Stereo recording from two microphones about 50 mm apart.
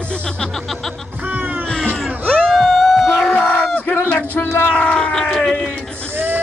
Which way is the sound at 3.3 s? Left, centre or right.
Left.